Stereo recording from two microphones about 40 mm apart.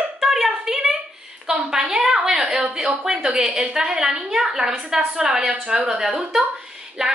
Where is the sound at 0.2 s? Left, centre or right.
Centre.